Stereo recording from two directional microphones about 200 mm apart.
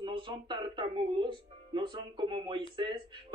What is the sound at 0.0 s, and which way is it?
Speech, 25° right (ahead or behind).